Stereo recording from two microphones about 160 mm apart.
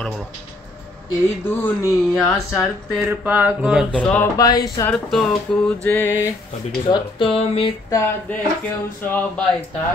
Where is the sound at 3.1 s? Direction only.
10° right (ahead or behind).